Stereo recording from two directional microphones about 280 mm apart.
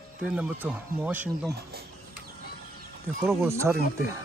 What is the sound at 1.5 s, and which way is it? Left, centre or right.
Speech, right.